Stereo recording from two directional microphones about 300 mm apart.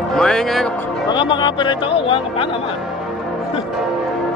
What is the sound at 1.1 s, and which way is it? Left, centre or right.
Speech, centre.